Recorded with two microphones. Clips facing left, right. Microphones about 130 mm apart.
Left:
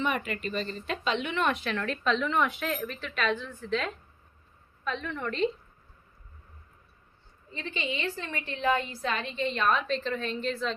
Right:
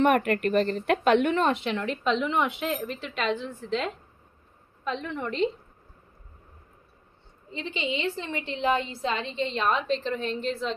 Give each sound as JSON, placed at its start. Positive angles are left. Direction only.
{"t": 0.0, "sound": "a woman's voice", "side_deg": -60}
{"t": 1.4, "sound": "a woman's voice", "side_deg": -25}
{"t": 7.5, "sound": "a woman's voice", "side_deg": -20}